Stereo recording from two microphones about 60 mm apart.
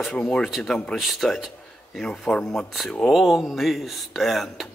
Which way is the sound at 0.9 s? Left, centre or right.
Centre.